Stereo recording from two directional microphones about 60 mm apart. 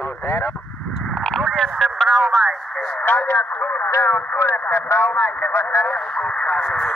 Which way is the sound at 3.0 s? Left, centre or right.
Left.